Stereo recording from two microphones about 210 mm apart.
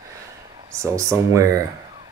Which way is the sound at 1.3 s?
15° right (ahead or behind).